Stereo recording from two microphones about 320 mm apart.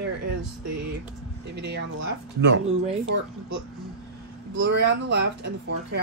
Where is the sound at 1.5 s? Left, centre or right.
Right.